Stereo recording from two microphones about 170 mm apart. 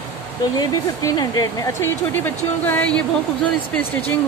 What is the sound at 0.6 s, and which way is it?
Speech, 25° left (ahead or behind).